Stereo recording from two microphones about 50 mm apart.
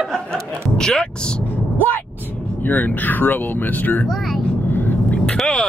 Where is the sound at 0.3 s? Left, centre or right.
Centre.